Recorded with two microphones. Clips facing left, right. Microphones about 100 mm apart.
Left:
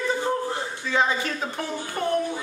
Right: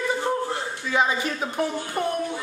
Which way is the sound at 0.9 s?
15° right (ahead or behind).